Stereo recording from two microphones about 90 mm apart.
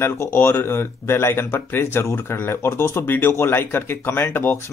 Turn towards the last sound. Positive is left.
turn(degrees=25)  # may be behind; listen again after turning